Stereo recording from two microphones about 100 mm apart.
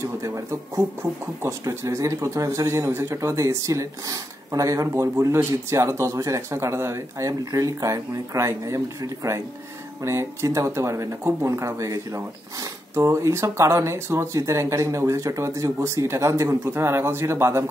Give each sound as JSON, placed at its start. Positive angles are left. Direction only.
{"t": 0.0, "sound": "speech", "side_deg": -30}